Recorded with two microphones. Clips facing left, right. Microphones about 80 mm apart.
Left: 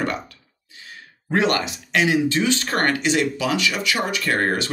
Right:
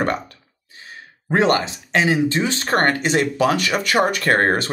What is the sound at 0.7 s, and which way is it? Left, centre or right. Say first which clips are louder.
Speech: right 2 dB; right.